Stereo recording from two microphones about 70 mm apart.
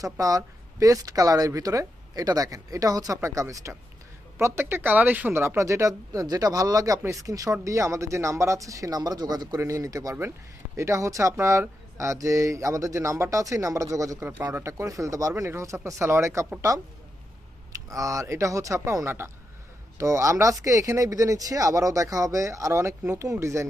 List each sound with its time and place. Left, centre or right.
0.0 s speech: right
3.2 s speech: right
5.3 s speech: right
6.2 s speech: right
9.6 s speech: right
17.8 s speech: right